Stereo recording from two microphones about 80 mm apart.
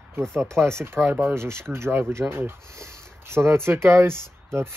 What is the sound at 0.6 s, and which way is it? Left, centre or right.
Speech, right.